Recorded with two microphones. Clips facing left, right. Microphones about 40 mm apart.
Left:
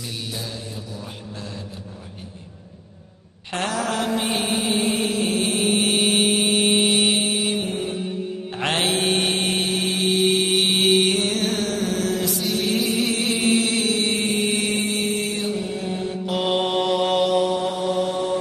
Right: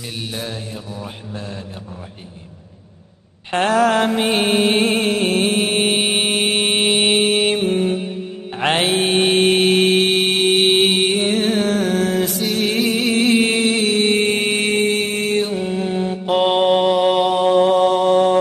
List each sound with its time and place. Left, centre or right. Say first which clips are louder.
0.3 s mantra: right 4 dB; right
0.9 s mantra: right 4 dB; right
3.5 s mantra: right 9 dB; right
5.9 s mantra: right 1 dB; right
6.2 s mantra: right 1 dB; right
8.5 s mantra: right 5 dB; right
17.4 s mantra: right 8 dB; right